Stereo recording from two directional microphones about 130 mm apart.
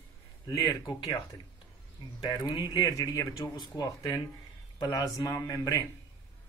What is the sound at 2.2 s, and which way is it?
Speech, 30° left (ahead or behind).